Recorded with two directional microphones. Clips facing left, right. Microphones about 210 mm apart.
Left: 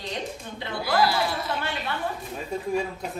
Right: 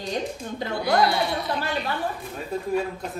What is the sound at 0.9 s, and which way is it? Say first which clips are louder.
Speech: right 1 dB; centre (ahead or behind).